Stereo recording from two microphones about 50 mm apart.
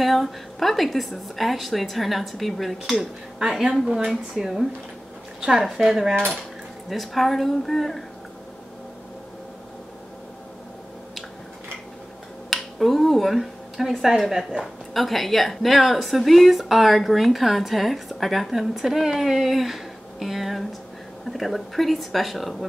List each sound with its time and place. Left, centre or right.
0.0 s speech: centre
3.8 s speech: centre
4.1 s speech: centre
5.9 s speech: centre
12.4 s speech: centre